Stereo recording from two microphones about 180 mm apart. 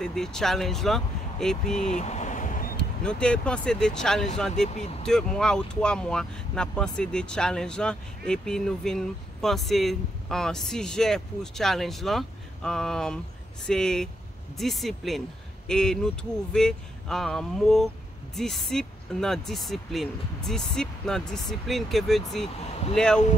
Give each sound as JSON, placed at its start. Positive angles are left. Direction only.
{"t": 0.0, "sound": "speech", "side_deg": 5}
{"t": 1.8, "sound": "a sound", "side_deg": 40}
{"t": 2.8, "sound": "speech", "side_deg": 5}
{"t": 4.6, "sound": "speech", "side_deg": 40}
{"t": 5.0, "sound": "speech", "side_deg": 5}